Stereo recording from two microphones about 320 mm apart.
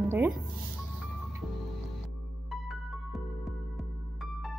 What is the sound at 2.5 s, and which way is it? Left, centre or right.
Music, centre.